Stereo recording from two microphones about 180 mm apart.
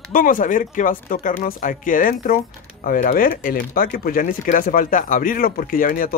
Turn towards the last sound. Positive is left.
turn(degrees=50)  # may be behind; listen again after turning